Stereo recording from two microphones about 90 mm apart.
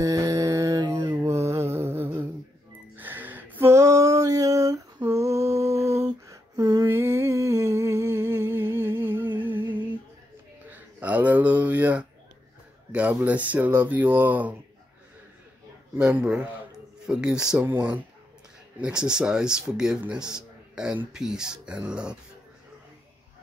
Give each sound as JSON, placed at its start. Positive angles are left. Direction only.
{"t": 0.0, "sound": "mantra", "side_deg": -40}
{"t": 1.2, "sound": "mantra", "side_deg": -30}
{"t": 3.0, "sound": "a sound", "side_deg": -20}
{"t": 3.6, "sound": "female singing", "side_deg": -40}
{"t": 6.9, "sound": "humming", "side_deg": -25}
{"t": 10.7, "sound": "a sound", "side_deg": -20}
{"t": 12.9, "sound": "speech", "side_deg": -15}
{"t": 16.0, "sound": "speech", "side_deg": -15}
{"t": 17.6, "sound": "speech", "side_deg": -20}